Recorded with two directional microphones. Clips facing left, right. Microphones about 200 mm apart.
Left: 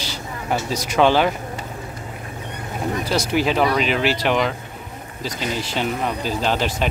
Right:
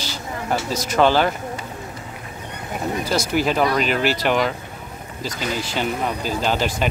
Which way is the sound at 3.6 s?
Centre (ahead or behind).